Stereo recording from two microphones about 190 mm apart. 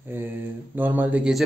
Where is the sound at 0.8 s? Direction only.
10° right (ahead or behind).